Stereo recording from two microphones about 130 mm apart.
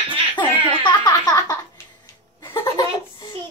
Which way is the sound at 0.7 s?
40° left (ahead or behind).